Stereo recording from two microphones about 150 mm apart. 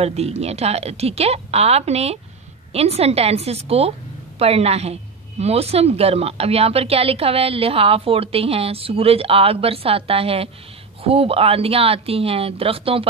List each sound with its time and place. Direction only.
0.0 s a woman's voice: 45° right (ahead or behind)